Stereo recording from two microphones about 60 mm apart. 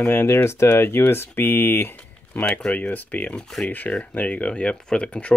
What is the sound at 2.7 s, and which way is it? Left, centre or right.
Speech, left.